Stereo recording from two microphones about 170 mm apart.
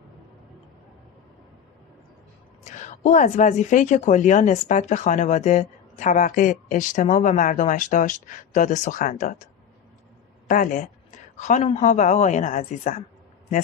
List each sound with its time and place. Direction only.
2.6 s a woman's voice: 45° left (ahead or behind)
10.5 s a woman's voice: 50° left (ahead or behind)